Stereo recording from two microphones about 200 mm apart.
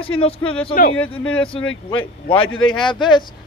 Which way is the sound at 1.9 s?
25° left (ahead or behind).